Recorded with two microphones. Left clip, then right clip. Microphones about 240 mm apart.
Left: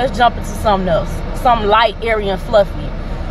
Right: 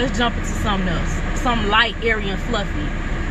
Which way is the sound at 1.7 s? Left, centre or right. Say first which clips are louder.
Left 5 dB; centre.